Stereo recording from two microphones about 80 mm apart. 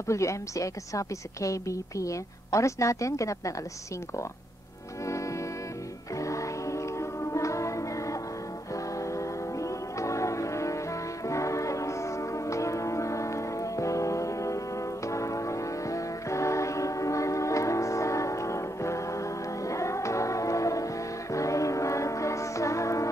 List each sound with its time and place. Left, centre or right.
0.1 s a woman's voice: left
6.1 s music: left